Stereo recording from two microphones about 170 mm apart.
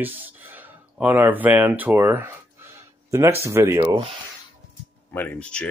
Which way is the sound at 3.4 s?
15° right (ahead or behind).